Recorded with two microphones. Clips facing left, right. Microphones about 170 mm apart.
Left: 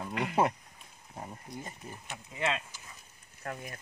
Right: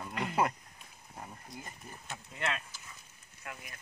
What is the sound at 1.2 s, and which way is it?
Speech, 25° left (ahead or behind).